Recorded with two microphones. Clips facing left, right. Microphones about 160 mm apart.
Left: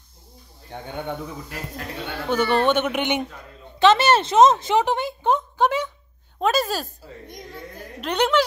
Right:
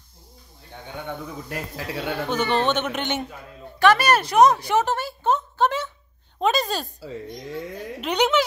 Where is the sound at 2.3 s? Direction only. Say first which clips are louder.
Left 4 dB; 10° left (ahead or behind).